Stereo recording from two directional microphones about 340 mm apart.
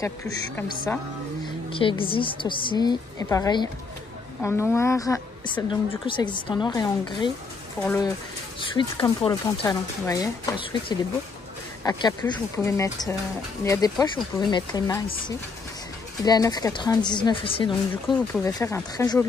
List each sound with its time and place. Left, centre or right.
0.0 s a woman's voice: centre
16.3 s a woman's voice: centre